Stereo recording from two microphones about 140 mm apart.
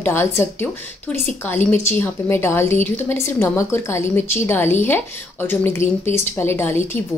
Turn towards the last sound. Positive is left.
turn(degrees=15)  # may be behind; listen again after turning